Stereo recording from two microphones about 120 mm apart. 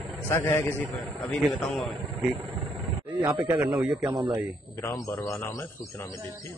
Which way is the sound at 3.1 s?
15° right (ahead or behind).